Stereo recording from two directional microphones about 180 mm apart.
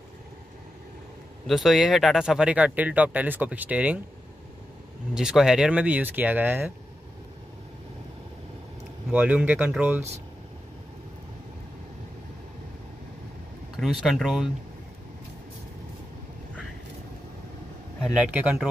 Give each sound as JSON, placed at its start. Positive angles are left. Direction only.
{"t": 1.5, "sound": "speech", "side_deg": 0}
{"t": 5.1, "sound": "speech", "side_deg": -5}
{"t": 9.1, "sound": "speech", "side_deg": -10}
{"t": 13.7, "sound": "speech", "side_deg": 0}
{"t": 18.1, "sound": "speech", "side_deg": -10}